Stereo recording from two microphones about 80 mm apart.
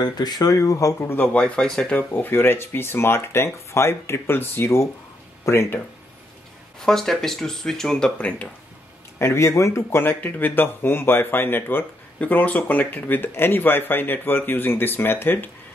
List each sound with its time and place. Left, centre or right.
0.0 s speech: left
1.0 s speech: left
1.3 s speech: centre
2.0 s speech: left
6.8 s speech: centre
9.2 s speech: left